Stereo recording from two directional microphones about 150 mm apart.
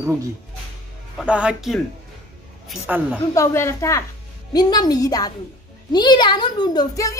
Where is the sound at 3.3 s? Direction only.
20° left (ahead or behind).